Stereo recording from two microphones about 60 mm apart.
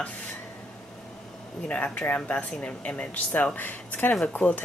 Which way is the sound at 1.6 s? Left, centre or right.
Left.